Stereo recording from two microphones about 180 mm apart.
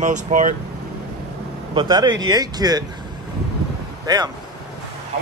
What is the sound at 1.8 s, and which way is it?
Speech, 20° right (ahead or behind).